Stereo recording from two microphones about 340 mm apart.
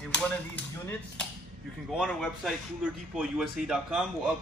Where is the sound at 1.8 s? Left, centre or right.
Centre.